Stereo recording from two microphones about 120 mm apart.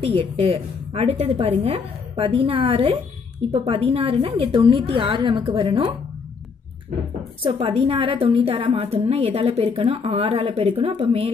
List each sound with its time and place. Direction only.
0.0 s a woman's voice: 55° right (ahead or behind)
7.4 s a woman's voice: 50° right (ahead or behind)